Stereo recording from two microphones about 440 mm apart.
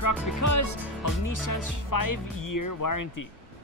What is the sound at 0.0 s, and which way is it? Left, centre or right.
Music, left.